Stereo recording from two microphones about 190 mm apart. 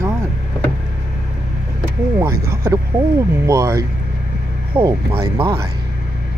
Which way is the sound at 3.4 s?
15° right (ahead or behind).